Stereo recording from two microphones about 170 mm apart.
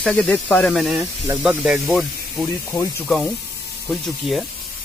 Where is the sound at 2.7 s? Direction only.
20° left (ahead or behind).